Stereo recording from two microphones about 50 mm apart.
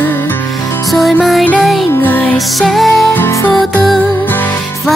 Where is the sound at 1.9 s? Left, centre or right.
Left.